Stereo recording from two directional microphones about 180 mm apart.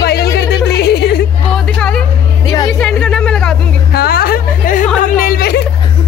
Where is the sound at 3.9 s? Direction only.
60° left (ahead or behind).